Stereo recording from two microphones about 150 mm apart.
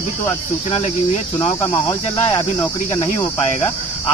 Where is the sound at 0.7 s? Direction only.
45° left (ahead or behind).